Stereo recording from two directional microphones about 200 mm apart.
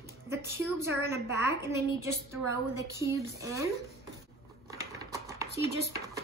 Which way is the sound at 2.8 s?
15° right (ahead or behind).